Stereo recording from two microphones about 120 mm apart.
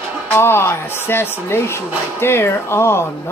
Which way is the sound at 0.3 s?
20° left (ahead or behind).